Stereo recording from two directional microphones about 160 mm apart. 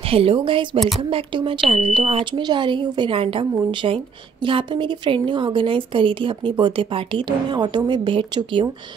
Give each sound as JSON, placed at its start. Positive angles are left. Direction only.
{"t": 0.0, "sound": "a woman's voice", "side_deg": -35}
{"t": 0.7, "sound": "speech", "side_deg": 0}
{"t": 1.1, "sound": "a woman's voice", "side_deg": -30}